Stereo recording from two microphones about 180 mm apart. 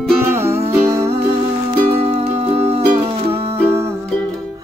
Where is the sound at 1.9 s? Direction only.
35° right (ahead or behind).